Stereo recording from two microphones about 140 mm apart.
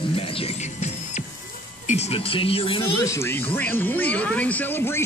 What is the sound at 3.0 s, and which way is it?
Speech, 20° left (ahead or behind).